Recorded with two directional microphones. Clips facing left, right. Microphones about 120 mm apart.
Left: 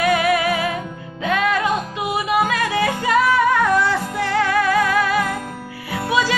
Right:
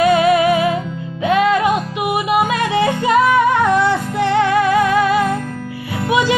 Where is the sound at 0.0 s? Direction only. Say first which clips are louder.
Right 5 dB; 25° right (ahead or behind).